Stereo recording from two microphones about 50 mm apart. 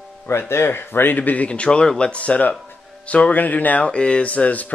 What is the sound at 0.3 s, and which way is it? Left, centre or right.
Speech, left.